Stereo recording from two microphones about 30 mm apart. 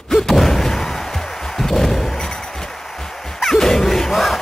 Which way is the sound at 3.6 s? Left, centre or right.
Centre.